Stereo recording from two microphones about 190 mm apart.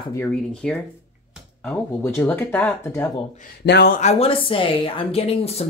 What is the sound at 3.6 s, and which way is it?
Speech, 60° left (ahead or behind).